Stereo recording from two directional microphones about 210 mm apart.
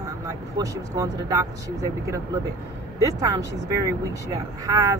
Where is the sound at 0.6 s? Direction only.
15° right (ahead or behind).